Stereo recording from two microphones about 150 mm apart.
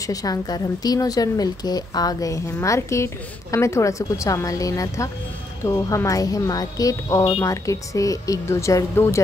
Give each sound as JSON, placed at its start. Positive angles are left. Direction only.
{"t": 0.0, "sound": "speech", "side_deg": 25}